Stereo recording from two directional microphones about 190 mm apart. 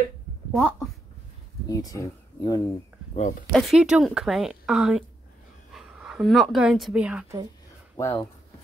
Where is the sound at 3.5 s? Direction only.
Centre (ahead or behind).